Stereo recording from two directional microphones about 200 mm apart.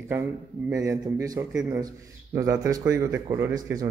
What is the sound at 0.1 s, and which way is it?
A man's voice, 10° right (ahead or behind).